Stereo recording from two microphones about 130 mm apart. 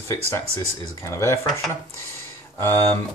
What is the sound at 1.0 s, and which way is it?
Speech, 20° left (ahead or behind).